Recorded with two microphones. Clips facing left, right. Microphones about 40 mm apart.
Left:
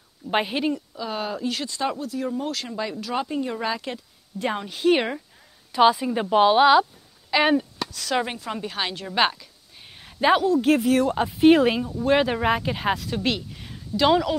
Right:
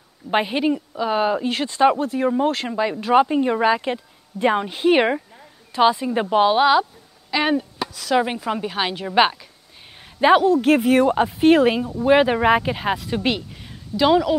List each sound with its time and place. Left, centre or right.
0.3 s a woman's voice: centre
0.7 s speech: right
5.7 s a woman's voice: centre
8.4 s a woman's voice: centre
11.9 s a woman's voice: centre
13.6 s a sound: centre